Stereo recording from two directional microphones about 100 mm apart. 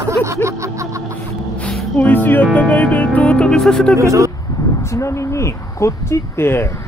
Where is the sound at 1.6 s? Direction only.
10° left (ahead or behind).